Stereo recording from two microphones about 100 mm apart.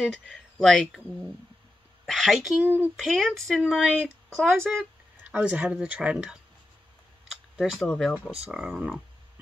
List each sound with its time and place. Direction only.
0.0 s speech: centre (ahead or behind)
2.6 s speech: 20° right (ahead or behind)
3.0 s speech: centre (ahead or behind)
5.2 s speech: 10° right (ahead or behind)
7.5 s speech: 5° right (ahead or behind)
7.9 s speech: 10° left (ahead or behind)
8.5 s speech: 10° right (ahead or behind)